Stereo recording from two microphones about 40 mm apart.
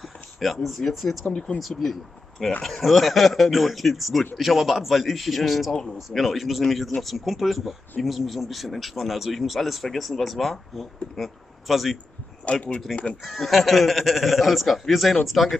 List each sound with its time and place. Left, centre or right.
0.4 s a man's voice: centre
12.5 s speech: left
12.9 s speech: centre